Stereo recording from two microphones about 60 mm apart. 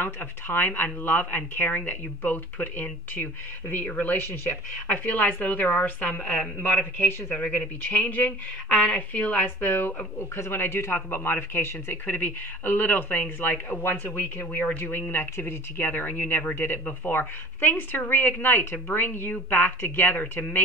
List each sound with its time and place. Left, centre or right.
0.0 s a woman's voice: left
10.1 s speech: left
15.9 s speech: left